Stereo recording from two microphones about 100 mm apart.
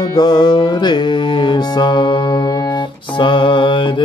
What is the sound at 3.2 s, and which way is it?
Mantra, 55° left (ahead or behind).